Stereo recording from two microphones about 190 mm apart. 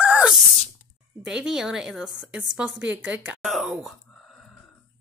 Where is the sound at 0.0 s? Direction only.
5° right (ahead or behind).